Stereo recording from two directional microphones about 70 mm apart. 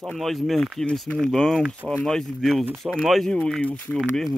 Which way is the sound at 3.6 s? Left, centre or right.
Centre.